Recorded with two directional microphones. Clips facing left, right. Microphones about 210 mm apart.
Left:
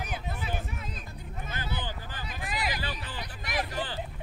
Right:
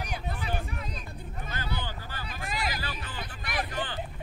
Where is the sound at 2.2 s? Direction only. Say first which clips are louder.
Even; centre (ahead or behind).